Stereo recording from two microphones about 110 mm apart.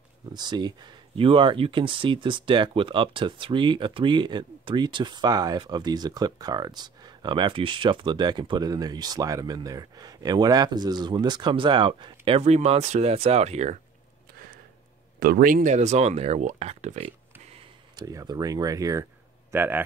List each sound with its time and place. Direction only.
0.3 s speech: 40° right (ahead or behind)
12.4 s speech: 75° right (ahead or behind)
15.7 s speech: 90° right; by 17.6 s 65° right (ahead or behind)
17.9 s speech: 35° right (ahead or behind)
19.5 s speech: 15° right (ahead or behind)